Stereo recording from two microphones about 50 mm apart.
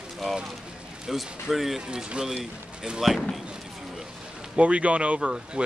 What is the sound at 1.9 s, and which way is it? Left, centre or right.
Speech, centre.